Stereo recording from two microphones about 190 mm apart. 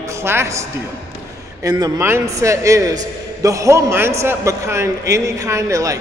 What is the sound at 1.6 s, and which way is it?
A man's voice, 20° right (ahead or behind).